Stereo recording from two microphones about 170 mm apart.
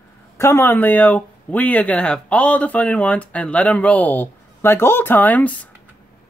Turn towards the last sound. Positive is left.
turn(degrees=10)  # may be behind; listen again after turning